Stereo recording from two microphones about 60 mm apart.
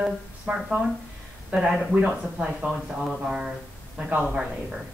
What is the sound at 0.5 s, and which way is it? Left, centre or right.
Speech, centre.